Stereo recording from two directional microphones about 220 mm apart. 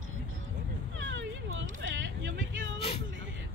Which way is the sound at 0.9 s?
55° right (ahead or behind).